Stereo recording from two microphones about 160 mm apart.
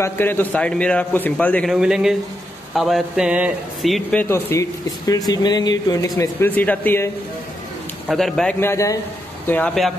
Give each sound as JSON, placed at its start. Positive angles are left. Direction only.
{"t": 0.0, "sound": "speech", "side_deg": 15}
{"t": 1.7, "sound": "speech", "side_deg": -5}
{"t": 8.1, "sound": "speech", "side_deg": 0}
{"t": 8.5, "sound": "speech", "side_deg": 15}